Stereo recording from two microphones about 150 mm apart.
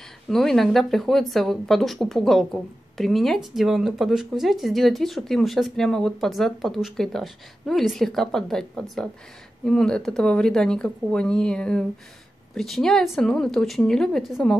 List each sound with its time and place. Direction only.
0.3 s speech: centre (ahead or behind)